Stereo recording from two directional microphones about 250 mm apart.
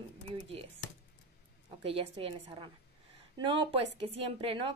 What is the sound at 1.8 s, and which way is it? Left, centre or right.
A woman's voice, right.